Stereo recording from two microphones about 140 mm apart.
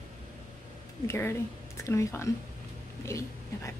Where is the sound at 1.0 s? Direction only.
20° left (ahead or behind).